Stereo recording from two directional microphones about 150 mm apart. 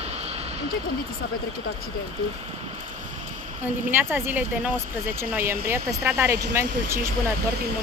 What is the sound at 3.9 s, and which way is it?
Speech, 15° right (ahead or behind).